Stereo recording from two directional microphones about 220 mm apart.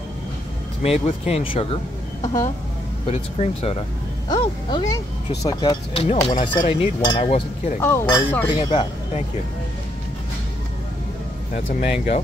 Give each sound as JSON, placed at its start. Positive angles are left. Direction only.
{"t": 0.8, "sound": "speech", "side_deg": 30}
{"t": 3.1, "sound": "speech", "side_deg": 30}
{"t": 7.8, "sound": "speech", "side_deg": 10}